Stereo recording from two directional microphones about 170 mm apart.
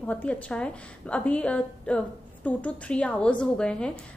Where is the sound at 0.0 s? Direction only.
10° left (ahead or behind).